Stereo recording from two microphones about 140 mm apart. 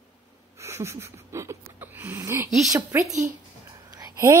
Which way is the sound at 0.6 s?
20° right (ahead or behind).